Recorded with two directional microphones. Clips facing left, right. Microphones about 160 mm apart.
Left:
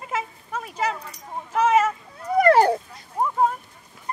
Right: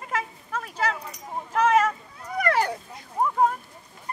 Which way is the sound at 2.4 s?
30° left (ahead or behind).